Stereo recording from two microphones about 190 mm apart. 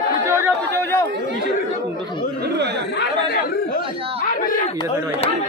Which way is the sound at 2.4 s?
65° right (ahead or behind).